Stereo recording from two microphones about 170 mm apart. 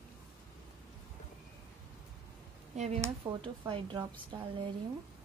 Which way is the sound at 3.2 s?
15° right (ahead or behind).